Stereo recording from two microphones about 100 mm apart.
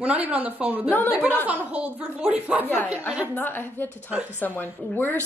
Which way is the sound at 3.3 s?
20° left (ahead or behind).